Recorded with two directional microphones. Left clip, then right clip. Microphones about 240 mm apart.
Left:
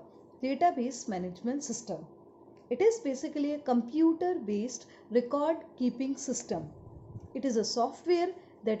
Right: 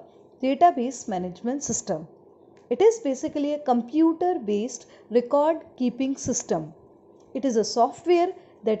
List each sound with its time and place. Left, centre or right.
0.4 s a woman's voice: centre